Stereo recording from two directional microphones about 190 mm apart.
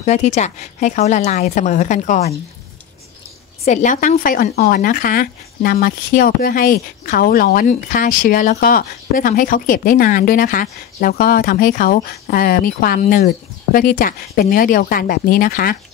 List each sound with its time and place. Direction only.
0.0 s speech: 35° left (ahead or behind)
3.6 s speech: 40° left (ahead or behind)